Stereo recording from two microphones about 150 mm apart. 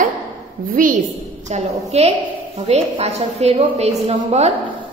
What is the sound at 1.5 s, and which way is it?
A woman's voice, 45° right (ahead or behind).